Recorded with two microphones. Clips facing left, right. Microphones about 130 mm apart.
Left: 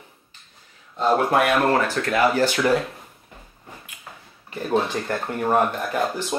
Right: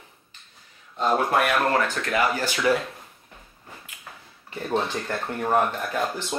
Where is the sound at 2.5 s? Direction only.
Centre (ahead or behind).